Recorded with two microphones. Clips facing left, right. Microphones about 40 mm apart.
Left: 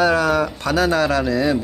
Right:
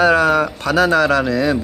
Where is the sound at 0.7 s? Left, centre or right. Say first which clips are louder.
Right 4 dB; right.